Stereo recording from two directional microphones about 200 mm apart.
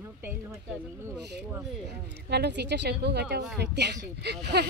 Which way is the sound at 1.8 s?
55° right (ahead or behind).